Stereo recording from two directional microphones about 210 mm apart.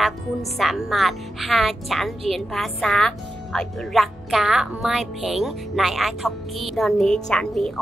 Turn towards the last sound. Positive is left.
turn(degrees=5)  # may be behind; listen again after turning